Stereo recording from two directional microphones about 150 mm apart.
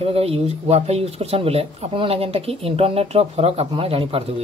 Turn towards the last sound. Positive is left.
turn(degrees=-40)  # may be behind; listen again after turning